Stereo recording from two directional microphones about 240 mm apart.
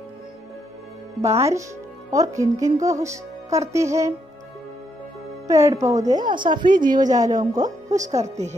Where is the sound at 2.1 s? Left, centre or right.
Centre.